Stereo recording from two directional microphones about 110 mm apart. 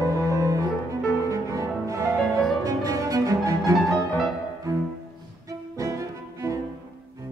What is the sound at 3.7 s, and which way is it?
Music, centre (ahead or behind).